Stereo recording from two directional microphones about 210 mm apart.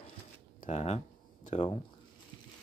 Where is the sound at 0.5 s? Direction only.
35° left (ahead or behind).